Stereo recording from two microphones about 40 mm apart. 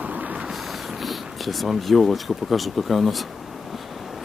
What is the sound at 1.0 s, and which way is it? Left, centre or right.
Speech, centre.